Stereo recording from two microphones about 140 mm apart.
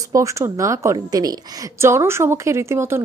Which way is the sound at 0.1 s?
20° right (ahead or behind).